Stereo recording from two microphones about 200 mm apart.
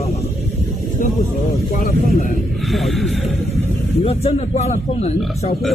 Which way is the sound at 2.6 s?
Centre (ahead or behind).